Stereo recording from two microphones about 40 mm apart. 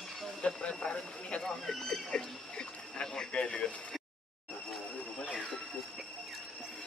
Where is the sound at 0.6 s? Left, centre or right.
Left.